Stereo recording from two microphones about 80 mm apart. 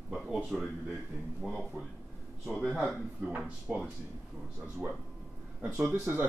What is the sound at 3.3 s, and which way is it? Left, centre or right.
Speech, centre.